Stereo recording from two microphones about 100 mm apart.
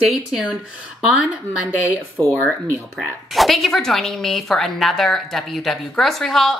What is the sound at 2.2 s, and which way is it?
Speech, 40° right (ahead or behind).